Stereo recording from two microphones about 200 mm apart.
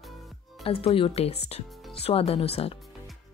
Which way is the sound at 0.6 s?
30° left (ahead or behind).